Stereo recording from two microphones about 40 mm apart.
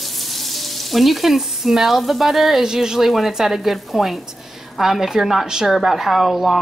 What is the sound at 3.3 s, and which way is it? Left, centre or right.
Sizzle, centre.